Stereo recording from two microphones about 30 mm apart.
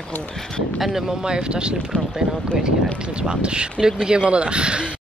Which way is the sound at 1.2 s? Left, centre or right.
Right.